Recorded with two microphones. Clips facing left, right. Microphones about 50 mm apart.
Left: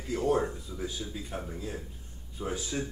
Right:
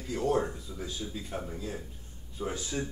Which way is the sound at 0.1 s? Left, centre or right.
Centre.